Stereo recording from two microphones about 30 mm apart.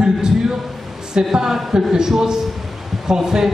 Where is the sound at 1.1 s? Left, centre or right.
Right.